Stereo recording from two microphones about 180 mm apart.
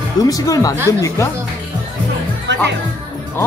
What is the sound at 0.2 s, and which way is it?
Speech, 20° left (ahead or behind).